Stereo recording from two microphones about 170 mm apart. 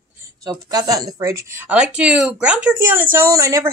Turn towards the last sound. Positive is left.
turn(degrees=-20)  # may be behind; listen again after turning